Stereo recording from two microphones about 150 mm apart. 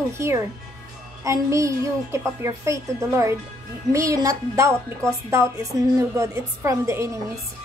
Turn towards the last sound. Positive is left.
turn(degrees=-20)  # may be behind; listen again after turning